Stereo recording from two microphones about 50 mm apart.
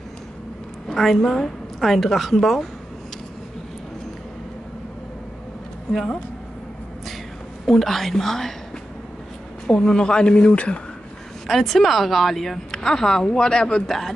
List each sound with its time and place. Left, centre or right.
0.8 s a woman's voice: centre
7.6 s a woman's voice: centre
9.7 s a woman's voice: centre
11.4 s a woman's voice: centre